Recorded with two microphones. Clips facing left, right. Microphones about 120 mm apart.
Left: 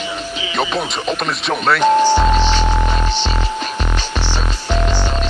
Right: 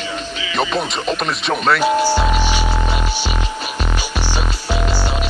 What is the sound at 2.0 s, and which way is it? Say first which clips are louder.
Music: left 3 dB; 10° right (ahead or behind).